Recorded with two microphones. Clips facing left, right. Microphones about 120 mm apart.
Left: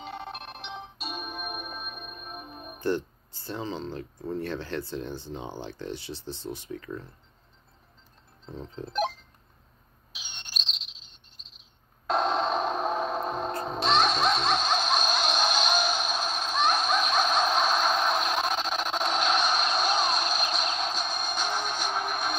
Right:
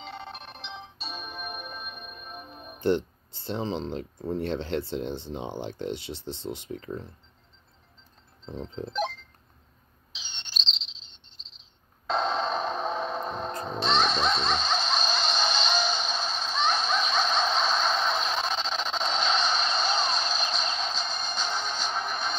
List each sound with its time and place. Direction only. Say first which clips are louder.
0.0 s music: left 2 dB; 5° left (ahead or behind)
2.8 s speech: right 3 dB; 20° right (ahead or behind)
8.9 s a sound: left 2 dB; 5° left (ahead or behind)
10.1 s chirp: right 1 dB; 10° left (ahead or behind)
12.1 s music: left 1 dB; 5° left (ahead or behind)